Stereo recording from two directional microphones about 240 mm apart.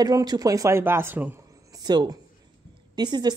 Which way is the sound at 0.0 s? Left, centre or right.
Centre.